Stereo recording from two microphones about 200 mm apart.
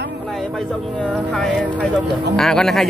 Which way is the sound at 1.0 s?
5° left (ahead or behind).